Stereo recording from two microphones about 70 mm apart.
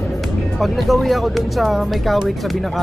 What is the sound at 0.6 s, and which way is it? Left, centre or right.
Speech, centre.